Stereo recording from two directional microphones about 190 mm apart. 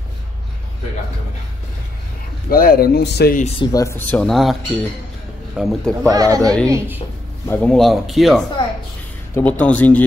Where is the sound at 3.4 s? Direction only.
35° left (ahead or behind).